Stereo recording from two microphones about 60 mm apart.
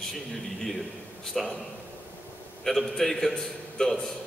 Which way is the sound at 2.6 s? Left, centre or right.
Centre.